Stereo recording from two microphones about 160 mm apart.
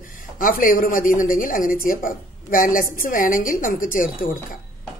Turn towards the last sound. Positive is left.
turn(degrees=55)  # may be behind; listen again after turning